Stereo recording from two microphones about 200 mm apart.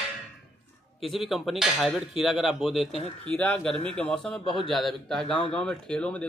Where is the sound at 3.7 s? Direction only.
30° right (ahead or behind).